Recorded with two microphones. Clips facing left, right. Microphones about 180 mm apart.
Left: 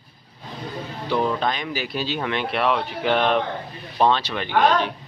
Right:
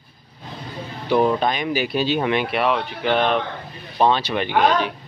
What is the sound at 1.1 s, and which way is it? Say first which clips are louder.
Speech: right 4 dB; 15° right (ahead or behind).